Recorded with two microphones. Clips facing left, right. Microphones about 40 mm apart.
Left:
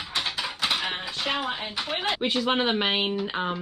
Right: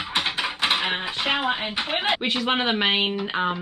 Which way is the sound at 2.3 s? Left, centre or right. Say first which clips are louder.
Right 1 dB; right.